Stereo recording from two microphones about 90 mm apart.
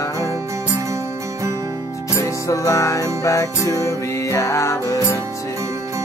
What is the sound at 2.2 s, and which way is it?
Music, 35° left (ahead or behind).